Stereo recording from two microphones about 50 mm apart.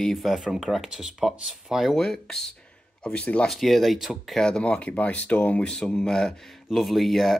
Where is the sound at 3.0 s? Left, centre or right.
Centre.